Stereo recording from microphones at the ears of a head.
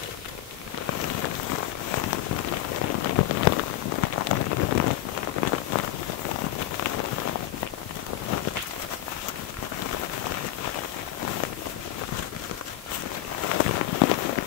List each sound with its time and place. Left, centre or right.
0.8 s rain on surface: left
9.8 s rain on surface: left
13.4 s a sound: left